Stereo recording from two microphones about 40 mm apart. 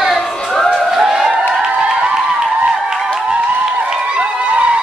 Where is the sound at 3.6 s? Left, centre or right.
Right.